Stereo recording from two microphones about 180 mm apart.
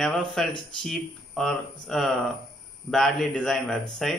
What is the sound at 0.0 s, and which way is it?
Speech, centre (ahead or behind).